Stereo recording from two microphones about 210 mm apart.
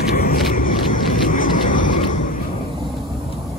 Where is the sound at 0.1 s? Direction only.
40° left (ahead or behind).